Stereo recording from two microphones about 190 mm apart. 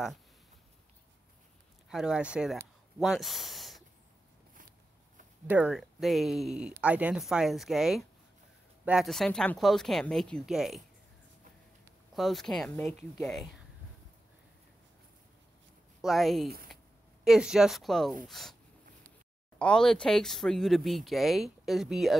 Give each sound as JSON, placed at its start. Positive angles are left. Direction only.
{"t": 1.9, "sound": "speech", "side_deg": -5}
{"t": 5.5, "sound": "speech", "side_deg": -5}
{"t": 12.2, "sound": "speech", "side_deg": 0}
{"t": 16.0, "sound": "speech", "side_deg": 0}
{"t": 19.6, "sound": "speech", "side_deg": 5}